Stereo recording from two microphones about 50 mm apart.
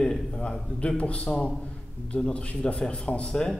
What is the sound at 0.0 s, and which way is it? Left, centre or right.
A man's voice, centre.